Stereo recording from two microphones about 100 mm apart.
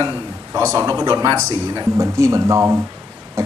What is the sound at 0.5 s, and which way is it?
A man's voice, 30° right (ahead or behind).